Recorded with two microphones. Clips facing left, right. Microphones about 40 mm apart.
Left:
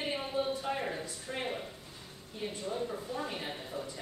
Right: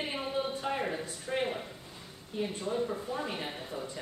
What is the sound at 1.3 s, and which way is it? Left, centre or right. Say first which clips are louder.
Speech: right 6 dB; centre.